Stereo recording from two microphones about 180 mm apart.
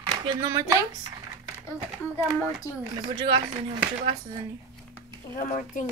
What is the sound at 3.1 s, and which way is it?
Speech, 25° right (ahead or behind).